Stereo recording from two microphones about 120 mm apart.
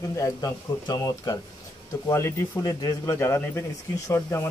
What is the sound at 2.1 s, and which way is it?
Speech, 20° left (ahead or behind).